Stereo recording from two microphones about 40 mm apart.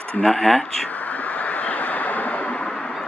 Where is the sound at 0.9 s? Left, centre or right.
Left.